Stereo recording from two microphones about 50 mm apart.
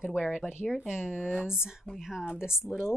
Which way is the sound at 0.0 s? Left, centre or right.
Centre.